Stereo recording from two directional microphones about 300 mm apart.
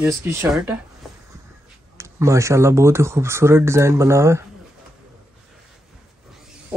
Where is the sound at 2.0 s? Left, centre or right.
Centre.